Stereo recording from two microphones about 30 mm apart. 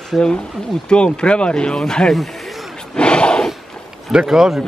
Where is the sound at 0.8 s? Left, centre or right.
Left.